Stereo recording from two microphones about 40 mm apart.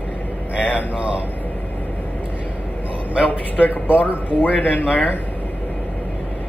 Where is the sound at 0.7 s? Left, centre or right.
Right.